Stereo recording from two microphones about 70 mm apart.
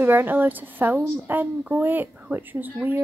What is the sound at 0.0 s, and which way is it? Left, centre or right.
Speech, right.